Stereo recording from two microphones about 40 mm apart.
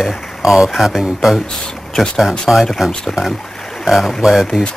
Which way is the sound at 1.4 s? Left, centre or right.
Centre.